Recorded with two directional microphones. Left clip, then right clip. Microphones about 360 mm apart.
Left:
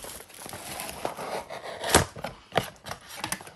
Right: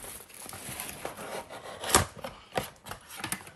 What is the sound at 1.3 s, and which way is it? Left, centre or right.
Chopping, left.